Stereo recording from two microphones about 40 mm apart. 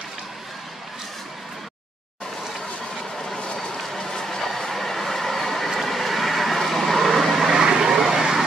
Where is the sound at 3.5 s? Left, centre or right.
Centre.